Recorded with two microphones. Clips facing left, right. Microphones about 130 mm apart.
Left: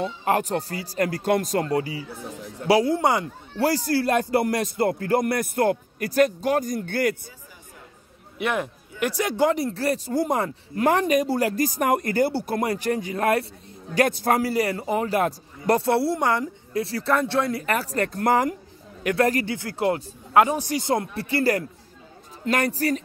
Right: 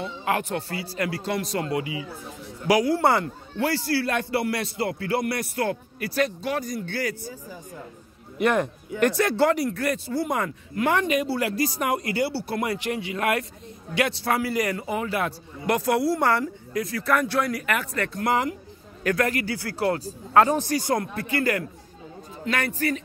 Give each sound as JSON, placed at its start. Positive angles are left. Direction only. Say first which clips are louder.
{"t": 0.0, "sound": "a man's voice", "louder": "left 3 dB", "side_deg": 40}
{"t": 2.7, "sound": "speech", "louder": "left 1 dB", "side_deg": 25}
{"t": 3.0, "sound": "speech", "louder": "right 1 dB", "side_deg": 15}
{"t": 3.5, "sound": "a man's voice", "louder": "left 3 dB", "side_deg": 40}
{"t": 8.4, "sound": "a man's voice", "louder": "right 4 dB", "side_deg": 5}
{"t": 16.2, "sound": "speech", "louder": "right 1 dB", "side_deg": 20}
{"t": 16.7, "sound": "a man's voice", "louder": "left 1 dB", "side_deg": 30}
{"t": 19.4, "sound": "speech", "louder": "left 1 dB", "side_deg": 20}
{"t": 21.2, "sound": "a man's voice", "louder": "left 2 dB", "side_deg": 35}